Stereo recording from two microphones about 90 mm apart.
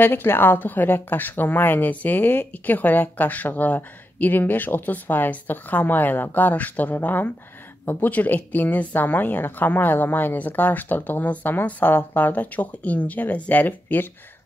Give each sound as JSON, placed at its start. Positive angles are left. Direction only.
{"t": 0.0, "sound": "a woman's voice", "side_deg": 25}